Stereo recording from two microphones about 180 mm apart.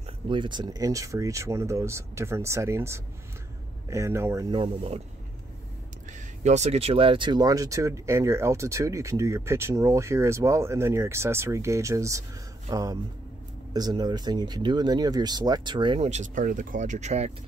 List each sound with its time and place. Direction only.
0.3 s speech: 25° right (ahead or behind)
4.6 s speech: 35° right (ahead or behind)
6.4 s speech: 40° right (ahead or behind)
16.1 s speech: 45° right (ahead or behind)